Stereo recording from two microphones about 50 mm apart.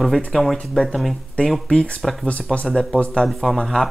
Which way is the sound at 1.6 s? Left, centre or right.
Left.